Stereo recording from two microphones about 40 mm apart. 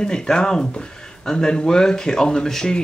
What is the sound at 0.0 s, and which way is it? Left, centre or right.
Speech, centre.